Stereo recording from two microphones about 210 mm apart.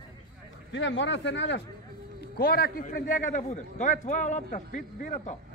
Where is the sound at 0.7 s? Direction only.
60° left (ahead or behind).